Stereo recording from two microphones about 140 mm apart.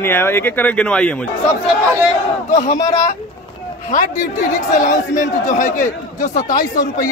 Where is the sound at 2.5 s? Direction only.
60° left (ahead or behind).